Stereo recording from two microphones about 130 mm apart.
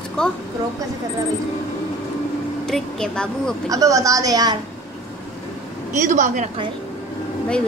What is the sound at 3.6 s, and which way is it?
Speech, 25° right (ahead or behind).